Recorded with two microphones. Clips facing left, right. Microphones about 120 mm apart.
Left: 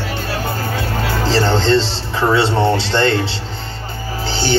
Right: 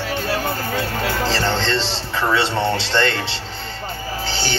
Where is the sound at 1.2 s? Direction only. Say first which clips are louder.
Left 9 dB; 35° left (ahead or behind).